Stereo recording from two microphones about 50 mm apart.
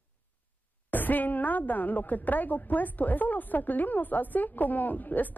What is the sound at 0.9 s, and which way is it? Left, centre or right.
A woman's voice, left.